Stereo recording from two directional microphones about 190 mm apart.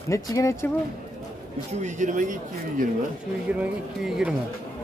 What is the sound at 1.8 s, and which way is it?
Speech, 40° right (ahead or behind).